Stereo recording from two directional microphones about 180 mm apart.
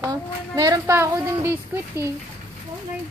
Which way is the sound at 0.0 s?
20° right (ahead or behind).